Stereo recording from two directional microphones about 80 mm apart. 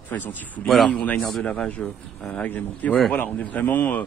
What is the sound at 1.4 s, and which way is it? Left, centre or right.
Speech, centre.